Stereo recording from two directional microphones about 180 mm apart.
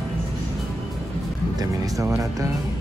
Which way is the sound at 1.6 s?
20° right (ahead or behind).